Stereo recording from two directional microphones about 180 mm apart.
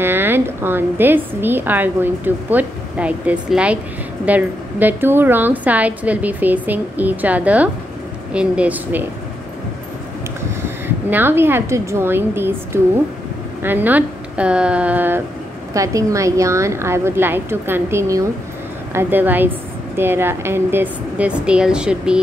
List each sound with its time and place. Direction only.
0.0 s a woman's voice: 10° right (ahead or behind)
11.1 s a woman's voice: 10° right (ahead or behind)